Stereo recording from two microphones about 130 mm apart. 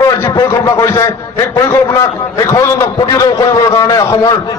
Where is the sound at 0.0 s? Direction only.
25° left (ahead or behind).